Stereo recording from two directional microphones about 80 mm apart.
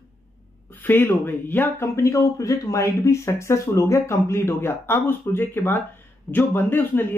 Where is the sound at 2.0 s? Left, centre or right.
Left.